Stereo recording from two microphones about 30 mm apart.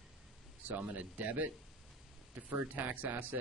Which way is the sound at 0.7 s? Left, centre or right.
Right.